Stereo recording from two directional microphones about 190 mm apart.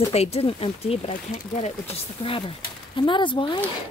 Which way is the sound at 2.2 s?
25° left (ahead or behind).